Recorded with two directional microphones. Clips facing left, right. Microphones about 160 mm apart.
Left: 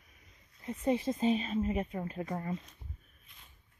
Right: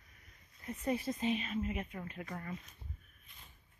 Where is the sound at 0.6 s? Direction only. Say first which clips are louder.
Left 5 dB; 25° left (ahead or behind).